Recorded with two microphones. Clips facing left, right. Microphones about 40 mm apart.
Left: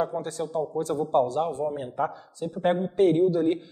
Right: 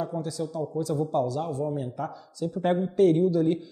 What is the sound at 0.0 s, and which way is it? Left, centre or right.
A man's voice, left.